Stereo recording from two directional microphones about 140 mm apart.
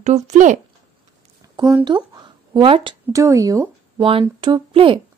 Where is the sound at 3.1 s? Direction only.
25° right (ahead or behind).